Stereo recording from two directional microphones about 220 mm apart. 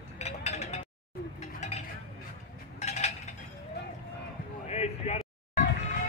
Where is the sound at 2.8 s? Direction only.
30° left (ahead or behind).